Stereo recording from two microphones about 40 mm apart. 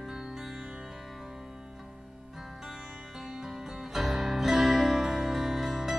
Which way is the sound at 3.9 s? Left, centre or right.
Centre.